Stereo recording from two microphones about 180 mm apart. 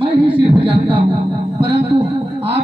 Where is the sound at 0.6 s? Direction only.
30° right (ahead or behind).